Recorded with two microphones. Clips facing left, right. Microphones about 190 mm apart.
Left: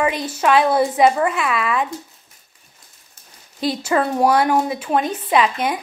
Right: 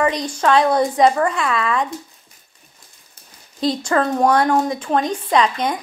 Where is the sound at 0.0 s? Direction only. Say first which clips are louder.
Right 1 dB; 5° left (ahead or behind).